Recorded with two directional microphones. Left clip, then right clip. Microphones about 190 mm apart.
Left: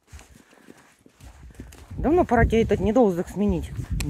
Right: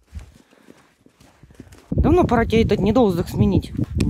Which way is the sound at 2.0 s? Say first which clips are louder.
Right 2 dB; 20° right (ahead or behind).